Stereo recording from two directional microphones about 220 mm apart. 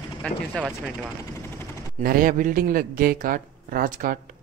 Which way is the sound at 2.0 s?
40° right (ahead or behind).